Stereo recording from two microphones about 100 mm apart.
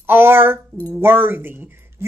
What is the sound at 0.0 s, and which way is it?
Speech, 20° right (ahead or behind).